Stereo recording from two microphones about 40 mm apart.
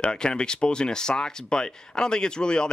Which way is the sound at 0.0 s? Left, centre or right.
Left.